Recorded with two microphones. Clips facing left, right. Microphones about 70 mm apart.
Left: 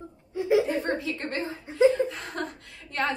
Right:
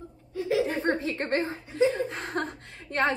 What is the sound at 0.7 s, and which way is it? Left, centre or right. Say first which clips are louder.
Chuckle: even; right.